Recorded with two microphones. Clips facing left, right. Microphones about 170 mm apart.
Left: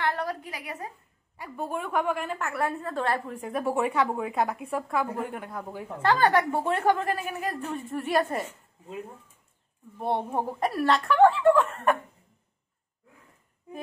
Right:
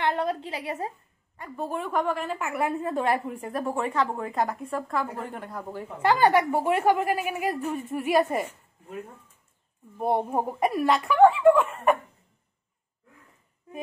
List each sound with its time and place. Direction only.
0.0 s a woman's voice: 20° right (ahead or behind)
1.3 s a woman's voice: 5° left (ahead or behind)
2.4 s a woman's voice: 20° right (ahead or behind)
3.5 s a woman's voice: 10° left (ahead or behind)
6.0 s a woman's voice: 15° right (ahead or behind)
9.9 s a woman's voice: 5° right (ahead or behind)